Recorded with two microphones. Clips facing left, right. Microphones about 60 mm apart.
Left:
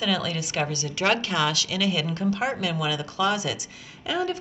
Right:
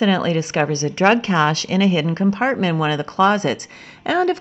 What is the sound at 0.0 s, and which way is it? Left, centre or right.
A woman's voice, right.